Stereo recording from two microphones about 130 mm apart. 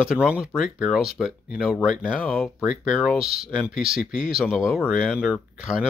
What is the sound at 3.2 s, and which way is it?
Speech, 50° right (ahead or behind).